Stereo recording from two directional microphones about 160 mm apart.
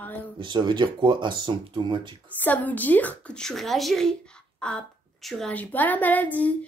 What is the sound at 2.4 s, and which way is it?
A woman's voice, 10° left (ahead or behind).